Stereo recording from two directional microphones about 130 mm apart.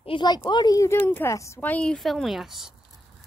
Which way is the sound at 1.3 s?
25° left (ahead or behind).